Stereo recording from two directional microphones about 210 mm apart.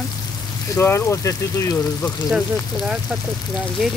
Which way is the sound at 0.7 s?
10° left (ahead or behind).